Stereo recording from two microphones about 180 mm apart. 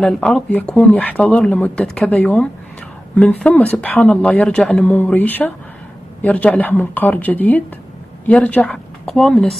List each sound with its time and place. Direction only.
0.0 s a woman's voice: 5° left (ahead or behind)